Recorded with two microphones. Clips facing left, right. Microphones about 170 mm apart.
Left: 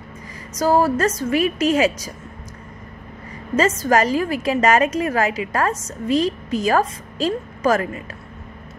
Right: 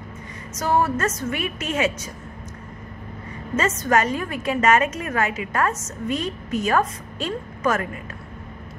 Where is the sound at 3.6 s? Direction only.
30° left (ahead or behind).